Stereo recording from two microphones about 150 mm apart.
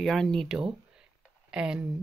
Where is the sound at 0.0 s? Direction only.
Centre (ahead or behind).